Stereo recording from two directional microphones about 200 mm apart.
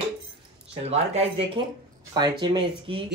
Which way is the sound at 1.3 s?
30° right (ahead or behind).